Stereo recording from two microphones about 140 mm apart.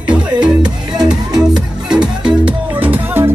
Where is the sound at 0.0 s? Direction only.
5° right (ahead or behind).